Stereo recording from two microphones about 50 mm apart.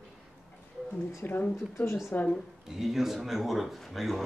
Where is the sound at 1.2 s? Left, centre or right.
Left.